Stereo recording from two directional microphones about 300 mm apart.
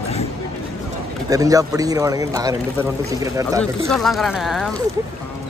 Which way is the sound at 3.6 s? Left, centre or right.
Centre.